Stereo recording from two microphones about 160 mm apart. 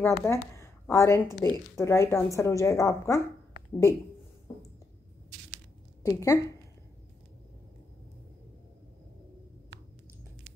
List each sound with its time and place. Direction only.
0.0 s a woman's voice: 15° left (ahead or behind)
6.0 s a woman's voice: 20° left (ahead or behind)